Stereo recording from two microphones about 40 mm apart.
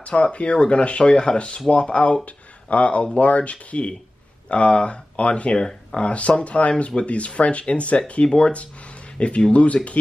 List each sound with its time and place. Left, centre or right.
0.0 s speech: left